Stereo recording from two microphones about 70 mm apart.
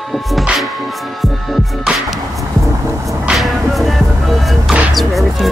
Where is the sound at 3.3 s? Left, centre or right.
Centre.